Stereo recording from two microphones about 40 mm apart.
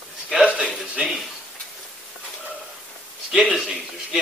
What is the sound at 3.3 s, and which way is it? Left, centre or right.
Speech, centre.